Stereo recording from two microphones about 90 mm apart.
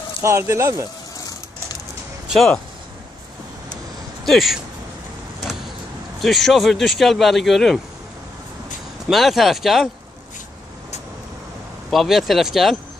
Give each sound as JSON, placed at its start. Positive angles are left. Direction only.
{"t": 0.2, "sound": "speech", "side_deg": -35}
{"t": 2.2, "sound": "a sound", "side_deg": 0}
{"t": 4.2, "sound": "speech", "side_deg": 0}
{"t": 6.2, "sound": "speech", "side_deg": 0}
{"t": 9.1, "sound": "speech", "side_deg": 0}
{"t": 11.9, "sound": "speech", "side_deg": 0}